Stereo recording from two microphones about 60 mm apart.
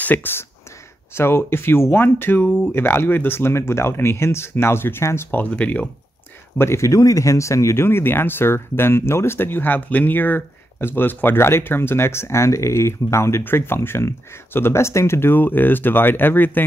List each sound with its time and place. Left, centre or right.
0.0 s speech: left
2.7 s speech: left
5.4 s speech: left
6.6 s speech: left
13.4 s speech: left